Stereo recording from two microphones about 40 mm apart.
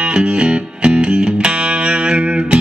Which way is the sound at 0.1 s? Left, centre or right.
Right.